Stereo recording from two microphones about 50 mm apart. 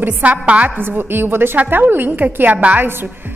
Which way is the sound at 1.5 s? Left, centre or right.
Right.